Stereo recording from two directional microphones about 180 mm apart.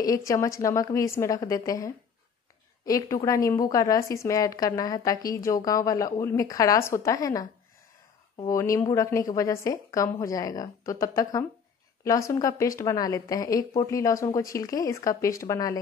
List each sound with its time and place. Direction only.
0.0 s a woman's voice: 20° left (ahead or behind)
8.5 s a woman's voice: 15° left (ahead or behind)